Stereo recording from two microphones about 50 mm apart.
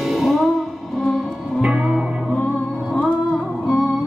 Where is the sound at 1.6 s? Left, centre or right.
Centre.